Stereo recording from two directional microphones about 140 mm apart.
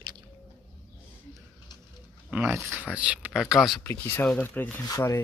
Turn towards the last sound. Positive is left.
turn(degrees=20)  # may be behind; listen again after turning